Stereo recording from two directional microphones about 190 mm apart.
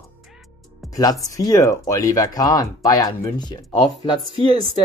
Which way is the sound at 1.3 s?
20° left (ahead or behind).